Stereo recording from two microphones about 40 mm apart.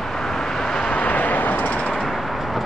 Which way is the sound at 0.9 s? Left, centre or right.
Left.